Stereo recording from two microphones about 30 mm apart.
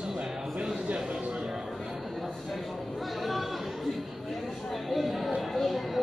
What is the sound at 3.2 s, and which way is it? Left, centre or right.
Chatter, centre.